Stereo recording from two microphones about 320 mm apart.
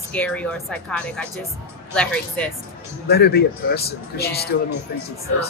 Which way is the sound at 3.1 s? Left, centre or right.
Left.